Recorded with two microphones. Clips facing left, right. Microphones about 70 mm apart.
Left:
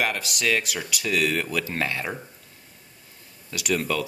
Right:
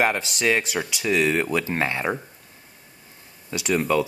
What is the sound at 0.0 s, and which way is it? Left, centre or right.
Speech, right.